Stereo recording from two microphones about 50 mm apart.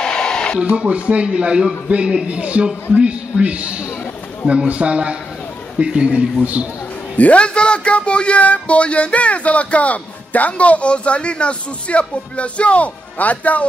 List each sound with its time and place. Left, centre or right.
0.0 s a sound: centre
0.7 s a man's voice: right
7.2 s speech: left